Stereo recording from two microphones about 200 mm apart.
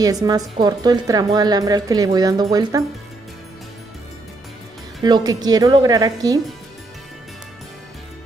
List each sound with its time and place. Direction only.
0.0 s a woman's voice: 20° right (ahead or behind)
5.0 s a woman's voice: 20° right (ahead or behind)